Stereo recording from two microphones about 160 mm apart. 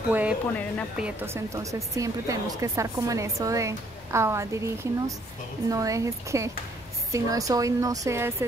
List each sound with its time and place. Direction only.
0.1 s speech: 10° right (ahead or behind)